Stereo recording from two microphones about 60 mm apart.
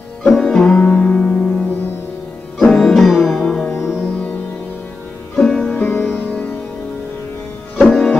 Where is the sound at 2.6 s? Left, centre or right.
Centre.